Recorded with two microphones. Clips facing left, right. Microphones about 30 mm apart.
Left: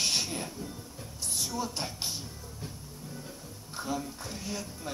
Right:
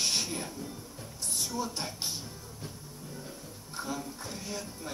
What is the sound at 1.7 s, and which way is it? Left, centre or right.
Speech, centre.